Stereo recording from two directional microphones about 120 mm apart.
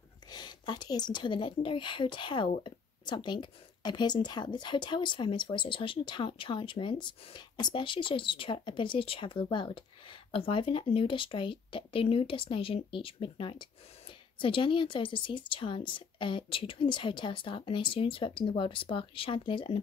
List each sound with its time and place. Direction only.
0.3 s speech: 35° left (ahead or behind)